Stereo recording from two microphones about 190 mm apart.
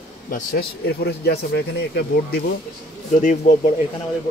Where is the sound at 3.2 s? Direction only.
40° left (ahead or behind).